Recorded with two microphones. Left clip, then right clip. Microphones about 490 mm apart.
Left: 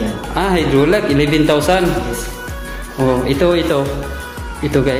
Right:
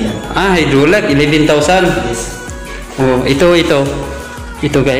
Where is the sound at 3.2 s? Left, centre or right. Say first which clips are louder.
Right 5 dB; left.